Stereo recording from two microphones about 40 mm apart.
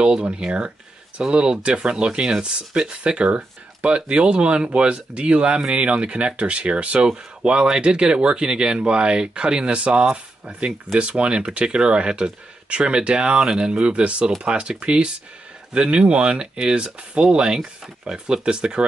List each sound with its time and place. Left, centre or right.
0.0 s speech: right